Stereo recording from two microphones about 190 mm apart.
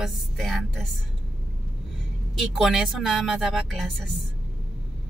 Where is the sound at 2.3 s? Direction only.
Centre (ahead or behind).